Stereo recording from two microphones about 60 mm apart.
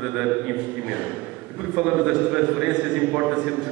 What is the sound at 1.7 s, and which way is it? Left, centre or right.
A man's voice, centre.